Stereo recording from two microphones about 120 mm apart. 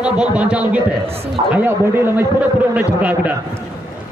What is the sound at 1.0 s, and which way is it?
Speech, 55° right (ahead or behind).